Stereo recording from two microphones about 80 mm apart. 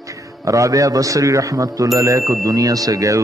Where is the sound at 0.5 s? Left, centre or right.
Right.